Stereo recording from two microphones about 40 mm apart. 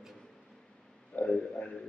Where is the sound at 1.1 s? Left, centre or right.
Left.